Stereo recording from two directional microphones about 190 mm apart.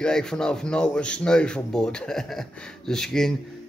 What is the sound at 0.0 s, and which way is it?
Speech, 5° left (ahead or behind).